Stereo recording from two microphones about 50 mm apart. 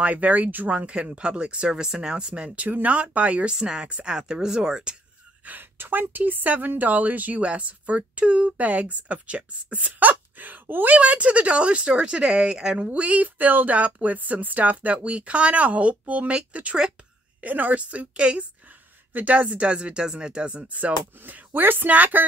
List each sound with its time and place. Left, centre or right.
0.0 s a woman's voice: right
0.7 s speech: right
5.4 s a woman's voice: right
11.0 s speech: right
12.8 s speech: right
21.2 s a woman's voice: right